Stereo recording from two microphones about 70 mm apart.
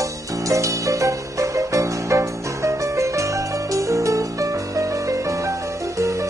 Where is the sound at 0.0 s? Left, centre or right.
Right.